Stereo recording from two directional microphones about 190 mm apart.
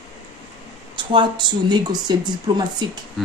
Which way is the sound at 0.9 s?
25° right (ahead or behind).